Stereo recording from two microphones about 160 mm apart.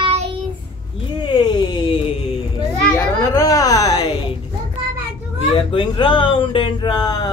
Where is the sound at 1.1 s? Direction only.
30° left (ahead or behind).